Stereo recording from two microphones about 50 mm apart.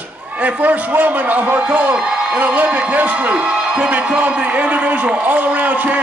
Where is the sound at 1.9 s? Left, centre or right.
Centre.